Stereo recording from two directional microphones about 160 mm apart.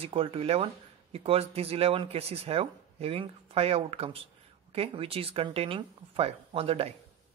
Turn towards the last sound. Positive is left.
turn(degrees=-40)  # may be behind; listen again after turning